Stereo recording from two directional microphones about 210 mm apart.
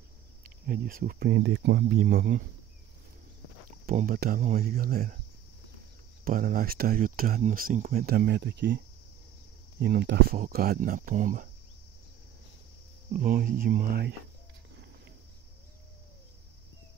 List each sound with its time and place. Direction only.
0.4 s speech: 45° right (ahead or behind)
3.8 s speech: 40° right (ahead or behind)
6.2 s speech: 40° right (ahead or behind)
13.2 s speech: 40° right (ahead or behind)